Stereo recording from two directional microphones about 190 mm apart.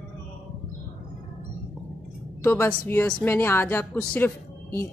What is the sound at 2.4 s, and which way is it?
Speech, 10° left (ahead or behind).